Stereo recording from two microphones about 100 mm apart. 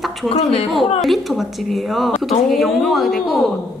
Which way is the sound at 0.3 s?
75° left (ahead or behind).